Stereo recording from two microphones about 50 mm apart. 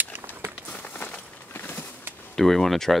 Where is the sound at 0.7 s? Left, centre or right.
Left.